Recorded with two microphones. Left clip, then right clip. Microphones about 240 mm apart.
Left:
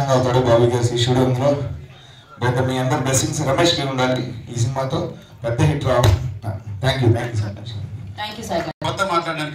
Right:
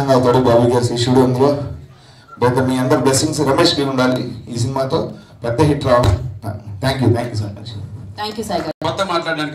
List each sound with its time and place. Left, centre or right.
0.0 s a man's voice: right
7.2 s a man's voice: right